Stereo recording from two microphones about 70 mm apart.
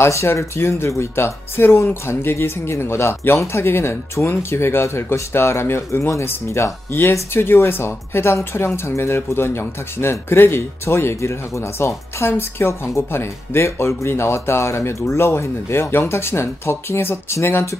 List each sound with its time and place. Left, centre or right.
0.0 s speech: left